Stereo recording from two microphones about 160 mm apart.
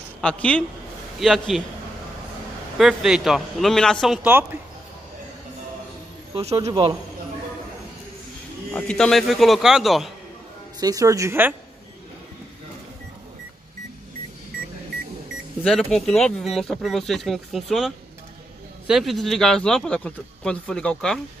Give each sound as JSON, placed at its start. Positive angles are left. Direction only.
{"t": 0.2, "sound": "a man's voice", "side_deg": 5}
{"t": 2.8, "sound": "speech", "side_deg": 0}
{"t": 6.3, "sound": "a man's voice", "side_deg": -35}
{"t": 6.6, "sound": "a woman's voice", "side_deg": -25}
{"t": 8.7, "sound": "speech", "side_deg": 5}
{"t": 10.8, "sound": "a woman's voice", "side_deg": -20}
{"t": 15.6, "sound": "speech", "side_deg": 0}